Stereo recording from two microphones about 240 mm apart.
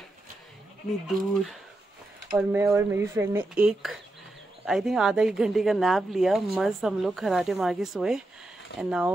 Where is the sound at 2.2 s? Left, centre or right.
Centre.